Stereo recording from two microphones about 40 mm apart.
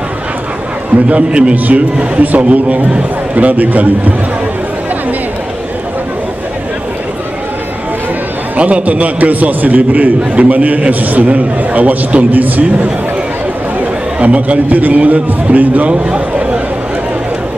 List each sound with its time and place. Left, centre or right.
1.0 s a man's voice: right
1.5 s a man's voice: right
8.5 s a man's voice: right
12.3 s a man's voice: right
14.2 s a man's voice: right
15.9 s a sound: right